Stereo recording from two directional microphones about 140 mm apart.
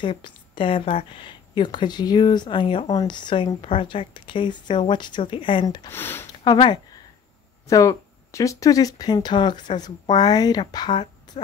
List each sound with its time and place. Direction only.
0.0 s a woman's voice: 40° left (ahead or behind)
5.9 s speech: 15° left (ahead or behind)
6.4 s a woman's voice: 30° left (ahead or behind)